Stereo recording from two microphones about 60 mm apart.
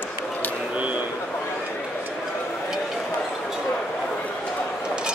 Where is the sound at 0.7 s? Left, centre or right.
Right.